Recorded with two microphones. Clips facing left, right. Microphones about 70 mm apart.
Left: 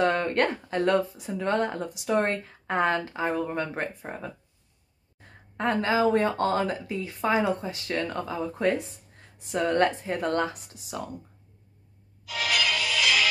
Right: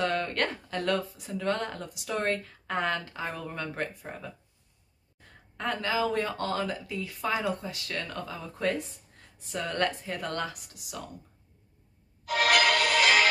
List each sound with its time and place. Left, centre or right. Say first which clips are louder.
0.0 s speech: left 5 dB; left
5.6 s speech: left 5 dB; left
12.3 s music: right 4 dB; right